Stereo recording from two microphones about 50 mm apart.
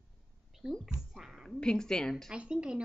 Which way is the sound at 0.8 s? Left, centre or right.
Centre.